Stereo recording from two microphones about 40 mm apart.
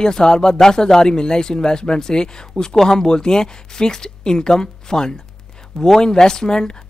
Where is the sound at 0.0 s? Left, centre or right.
Centre.